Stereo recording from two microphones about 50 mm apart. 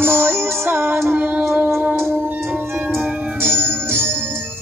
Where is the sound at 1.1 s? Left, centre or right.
Right.